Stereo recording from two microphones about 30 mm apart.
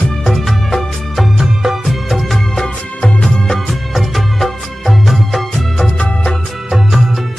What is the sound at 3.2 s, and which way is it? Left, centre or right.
Music of bollywood, centre.